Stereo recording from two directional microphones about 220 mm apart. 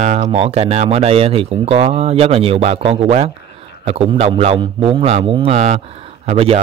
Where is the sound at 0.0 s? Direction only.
30° right (ahead or behind).